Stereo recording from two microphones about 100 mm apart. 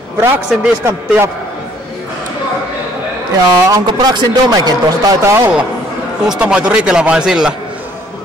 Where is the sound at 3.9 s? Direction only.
45° right (ahead or behind).